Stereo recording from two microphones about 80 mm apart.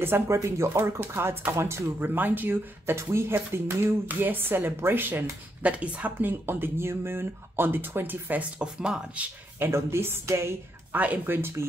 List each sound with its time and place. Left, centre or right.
0.0 s speech: right; by 9.3 s centre
9.6 s a woman's voice: right
10.9 s speech: right